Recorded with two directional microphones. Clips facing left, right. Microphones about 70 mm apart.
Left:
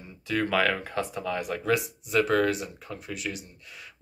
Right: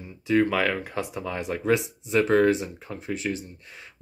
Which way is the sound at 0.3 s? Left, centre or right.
Centre.